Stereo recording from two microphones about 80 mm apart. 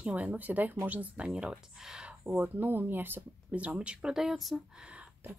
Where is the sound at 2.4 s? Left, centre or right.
Right; by 4.9 s centre.